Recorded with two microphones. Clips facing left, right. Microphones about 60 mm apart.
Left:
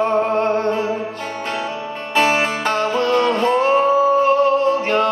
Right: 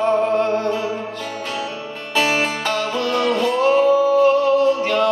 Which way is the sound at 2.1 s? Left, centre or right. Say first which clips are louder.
Left 2 dB; left.